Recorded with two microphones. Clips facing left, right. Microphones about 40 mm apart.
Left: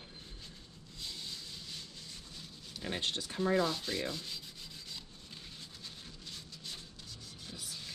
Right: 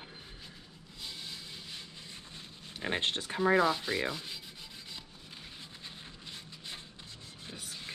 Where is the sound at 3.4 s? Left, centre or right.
Centre.